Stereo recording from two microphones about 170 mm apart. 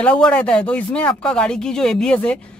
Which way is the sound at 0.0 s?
5° left (ahead or behind).